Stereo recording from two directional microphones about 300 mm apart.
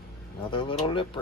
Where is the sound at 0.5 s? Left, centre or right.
Centre.